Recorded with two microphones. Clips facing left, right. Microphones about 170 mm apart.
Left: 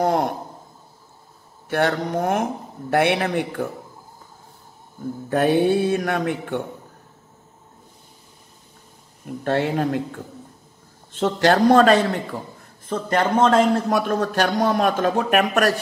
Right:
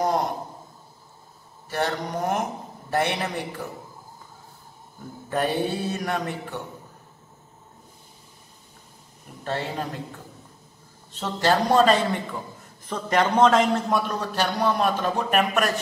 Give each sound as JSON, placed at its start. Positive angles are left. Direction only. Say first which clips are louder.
{"t": 0.0, "sound": "mantra", "louder": "left 4 dB", "side_deg": 55}
{"t": 1.7, "sound": "mantra", "louder": "left 6 dB", "side_deg": 60}
{"t": 5.3, "sound": "mantra", "louder": "left 7 dB", "side_deg": 50}
{"t": 9.4, "sound": "mantra", "louder": "left 8 dB", "side_deg": 55}
{"t": 11.1, "sound": "a man's voice", "louder": "left 5 dB", "side_deg": 50}
{"t": 13.6, "sound": "a man's voice", "louder": "left 4 dB", "side_deg": 50}